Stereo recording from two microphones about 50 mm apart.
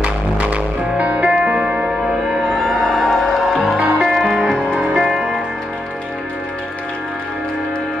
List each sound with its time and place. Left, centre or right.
0.0 s music: right
2.4 s music: centre
3.7 s music: centre